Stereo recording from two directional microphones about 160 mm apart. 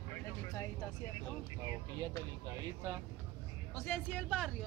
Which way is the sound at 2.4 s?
20° right (ahead or behind).